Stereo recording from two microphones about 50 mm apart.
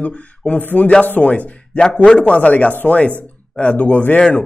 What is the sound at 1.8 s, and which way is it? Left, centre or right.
A man's voice, centre.